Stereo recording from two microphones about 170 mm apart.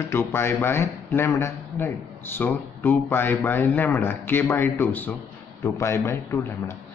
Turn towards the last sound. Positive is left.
turn(degrees=15)  # may be behind; listen again after turning